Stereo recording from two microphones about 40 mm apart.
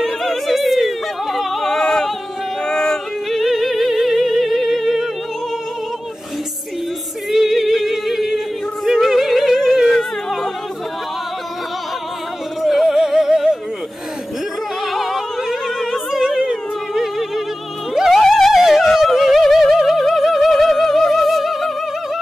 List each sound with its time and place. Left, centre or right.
0.0 s music: centre
1.8 s a sound: centre
2.6 s yodeling: centre
3.3 s music: centre
7.2 s singing: centre
8.8 s music: centre
12.6 s music: centre
14.9 s opera: centre
16.2 s a sound: centre
16.9 s music: centre
18.1 s music: centre